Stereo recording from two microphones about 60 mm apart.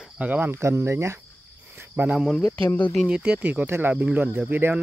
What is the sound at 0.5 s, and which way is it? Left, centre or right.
Cricket, right.